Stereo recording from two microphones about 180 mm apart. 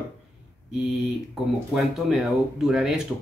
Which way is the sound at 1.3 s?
Centre (ahead or behind).